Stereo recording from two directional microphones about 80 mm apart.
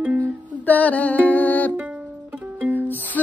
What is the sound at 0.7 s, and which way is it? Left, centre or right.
Music, centre.